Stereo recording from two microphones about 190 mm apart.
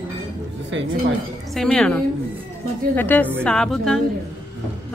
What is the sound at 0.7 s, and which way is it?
Speech, 85° right.